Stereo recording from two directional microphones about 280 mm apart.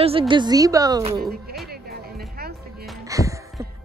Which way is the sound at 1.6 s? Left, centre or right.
Right.